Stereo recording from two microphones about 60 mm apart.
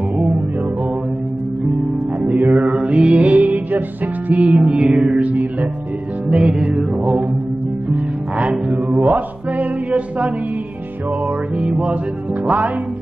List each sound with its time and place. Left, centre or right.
2.1 s music: right
7.9 s music: right